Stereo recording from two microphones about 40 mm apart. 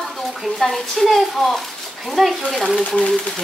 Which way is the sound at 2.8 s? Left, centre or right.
Left.